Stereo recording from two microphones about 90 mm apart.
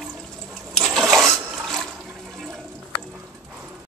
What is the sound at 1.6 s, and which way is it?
Water, 5° left (ahead or behind).